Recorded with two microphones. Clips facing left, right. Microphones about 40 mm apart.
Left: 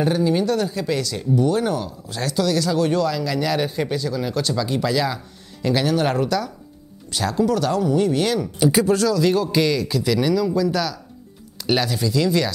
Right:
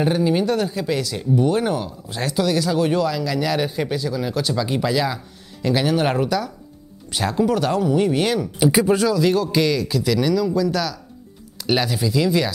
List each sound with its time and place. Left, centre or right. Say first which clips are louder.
0.0 s speech: even; centre
1.3 s speech: right 1 dB; right; by 5.9 s centre
5.9 s speech: right 1 dB; centre
7.1 s speech: even; right
9.2 s a man's voice: even; centre